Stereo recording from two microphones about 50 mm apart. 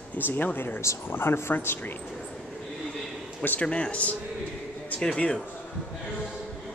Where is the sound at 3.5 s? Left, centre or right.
Left.